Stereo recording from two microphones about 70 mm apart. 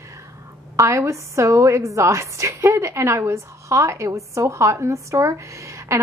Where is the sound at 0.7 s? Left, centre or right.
Right.